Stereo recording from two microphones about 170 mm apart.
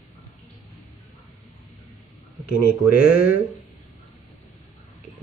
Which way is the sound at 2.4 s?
60° left (ahead or behind).